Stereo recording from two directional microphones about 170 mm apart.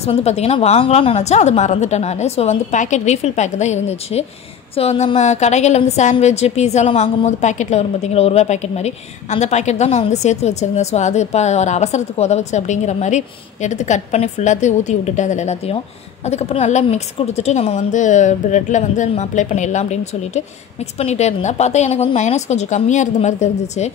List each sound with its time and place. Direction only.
0.0 s a woman's voice: 40° left (ahead or behind)